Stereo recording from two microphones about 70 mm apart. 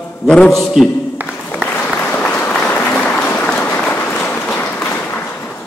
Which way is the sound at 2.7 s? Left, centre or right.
Left.